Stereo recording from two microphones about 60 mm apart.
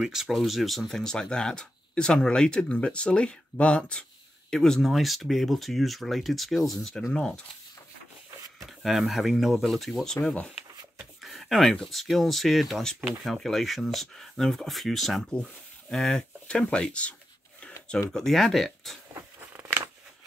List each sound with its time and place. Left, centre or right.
0.1 s speech: centre
4.5 s speech: centre
8.6 s speech: centre
11.2 s a sound: centre
11.7 s speech: centre
18.1 s speech: centre
19.4 s a sound: right